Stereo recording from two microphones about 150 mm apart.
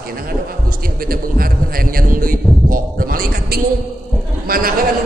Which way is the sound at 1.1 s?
75° right (ahead or behind).